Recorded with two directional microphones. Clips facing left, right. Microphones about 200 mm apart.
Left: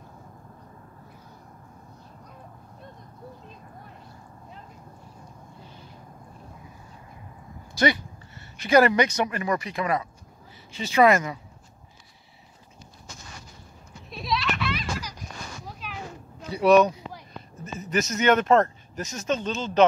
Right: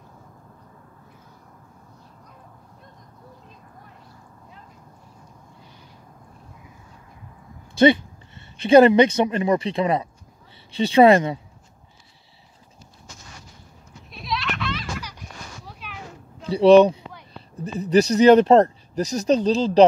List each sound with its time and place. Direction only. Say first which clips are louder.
8.6 s speech: right 7 dB; 25° right (ahead or behind)
14.1 s goat: left 1 dB; centre (ahead or behind)
16.3 s speech: right 6 dB; 30° right (ahead or behind)